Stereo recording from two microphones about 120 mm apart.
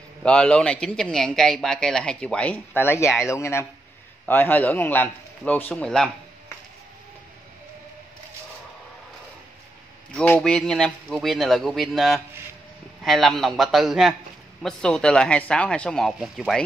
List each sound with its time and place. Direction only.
0.2 s a man's voice: 10° left (ahead or behind)
3.1 s speech: 5° right (ahead or behind)
3.3 s a man's voice: 20° left (ahead or behind)
10.1 s a man's voice: 10° left (ahead or behind)